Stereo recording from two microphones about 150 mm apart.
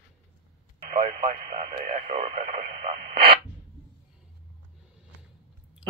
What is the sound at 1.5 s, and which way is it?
Radio, 35° right (ahead or behind).